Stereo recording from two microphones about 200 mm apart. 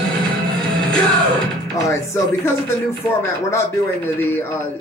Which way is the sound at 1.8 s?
15° left (ahead or behind).